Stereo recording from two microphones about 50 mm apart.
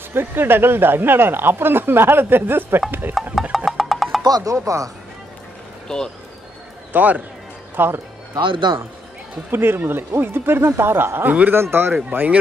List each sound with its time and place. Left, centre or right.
0.1 s speech: right
3.5 s music: centre
4.4 s speech: right
6.9 s speech: right
7.7 s speech: right
9.5 s speech: right
11.2 s a man's voice: right
11.5 s speech: right